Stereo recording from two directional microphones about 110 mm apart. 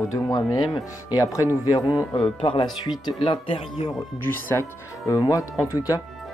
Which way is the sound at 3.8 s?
90° left.